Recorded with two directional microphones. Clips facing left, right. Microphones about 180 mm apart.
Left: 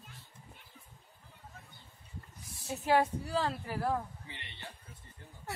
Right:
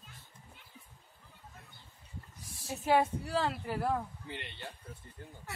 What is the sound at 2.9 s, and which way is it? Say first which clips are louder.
Speech: even; centre (ahead or behind).